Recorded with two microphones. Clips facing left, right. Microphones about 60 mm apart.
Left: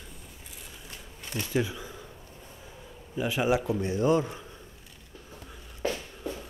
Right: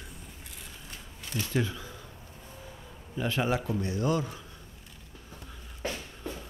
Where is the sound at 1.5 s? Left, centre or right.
Centre.